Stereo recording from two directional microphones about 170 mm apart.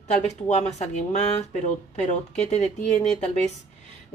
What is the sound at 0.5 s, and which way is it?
Speech, 40° left (ahead or behind).